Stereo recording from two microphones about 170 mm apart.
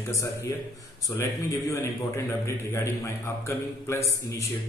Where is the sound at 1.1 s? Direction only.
15° left (ahead or behind).